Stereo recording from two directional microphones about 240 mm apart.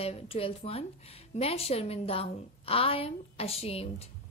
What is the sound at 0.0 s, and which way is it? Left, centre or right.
A woman's voice, left.